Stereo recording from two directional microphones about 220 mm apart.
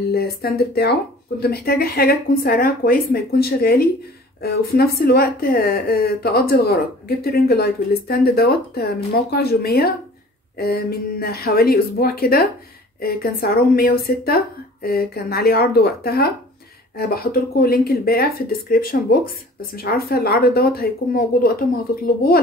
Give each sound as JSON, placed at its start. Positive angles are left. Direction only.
{"t": 0.1, "sound": "speech", "side_deg": 45}